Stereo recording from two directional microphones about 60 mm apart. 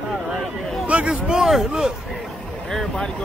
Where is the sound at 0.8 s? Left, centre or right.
Right.